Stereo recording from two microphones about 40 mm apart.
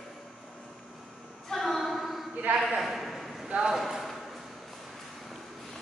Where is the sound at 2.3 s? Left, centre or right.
Right.